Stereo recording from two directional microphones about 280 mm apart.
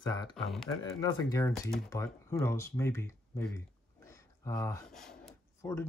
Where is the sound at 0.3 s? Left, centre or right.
Centre.